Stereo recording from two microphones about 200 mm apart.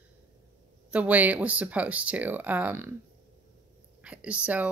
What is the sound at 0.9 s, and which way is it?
Speech, 5° right (ahead or behind).